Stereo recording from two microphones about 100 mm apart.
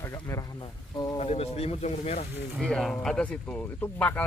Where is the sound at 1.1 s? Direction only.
90° left.